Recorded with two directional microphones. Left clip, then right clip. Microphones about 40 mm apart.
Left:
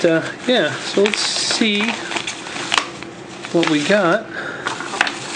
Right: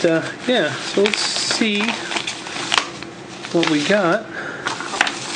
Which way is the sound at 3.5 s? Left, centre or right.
Left.